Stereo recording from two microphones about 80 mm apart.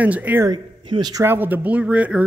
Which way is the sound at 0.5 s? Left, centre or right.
Right.